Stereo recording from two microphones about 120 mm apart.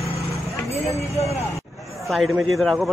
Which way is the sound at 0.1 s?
60° left (ahead or behind).